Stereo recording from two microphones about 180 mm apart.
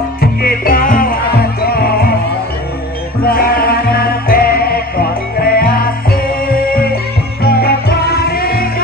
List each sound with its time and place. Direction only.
0.2 s music: 55° left (ahead or behind)
3.3 s music: 55° left (ahead or behind)